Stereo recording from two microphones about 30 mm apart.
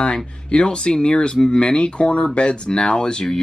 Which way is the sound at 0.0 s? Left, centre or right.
Left.